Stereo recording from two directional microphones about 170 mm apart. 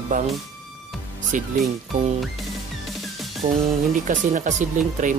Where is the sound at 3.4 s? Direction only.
45° right (ahead or behind).